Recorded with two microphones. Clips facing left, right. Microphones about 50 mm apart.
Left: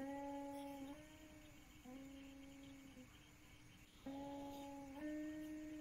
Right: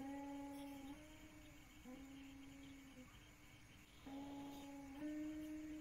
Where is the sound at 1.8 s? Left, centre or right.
Right.